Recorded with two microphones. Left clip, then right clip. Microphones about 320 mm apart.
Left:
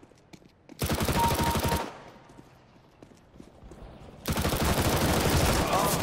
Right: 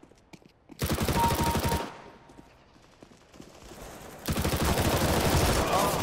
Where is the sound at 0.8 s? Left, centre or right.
Centre.